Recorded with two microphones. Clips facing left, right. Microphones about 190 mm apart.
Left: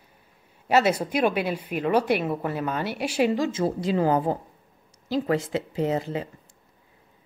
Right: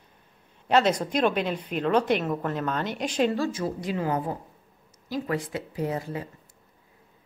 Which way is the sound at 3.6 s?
30° left (ahead or behind).